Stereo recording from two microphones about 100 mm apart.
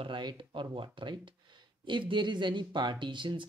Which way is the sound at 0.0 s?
50° right (ahead or behind).